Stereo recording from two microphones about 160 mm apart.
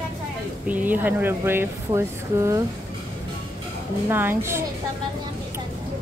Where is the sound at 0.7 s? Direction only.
10° right (ahead or behind).